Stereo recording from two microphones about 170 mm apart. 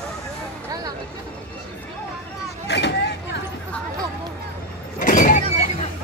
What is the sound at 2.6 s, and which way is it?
Vehicle, 90° left.